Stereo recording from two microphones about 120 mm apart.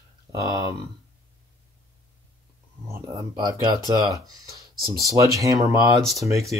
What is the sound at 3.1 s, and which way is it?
Speech, 35° right (ahead or behind).